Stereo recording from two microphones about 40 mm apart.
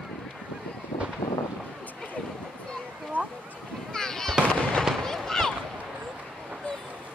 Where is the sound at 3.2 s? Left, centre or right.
Right.